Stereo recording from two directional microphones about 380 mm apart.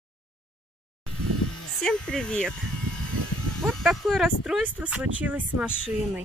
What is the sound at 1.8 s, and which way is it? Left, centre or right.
Speech, centre.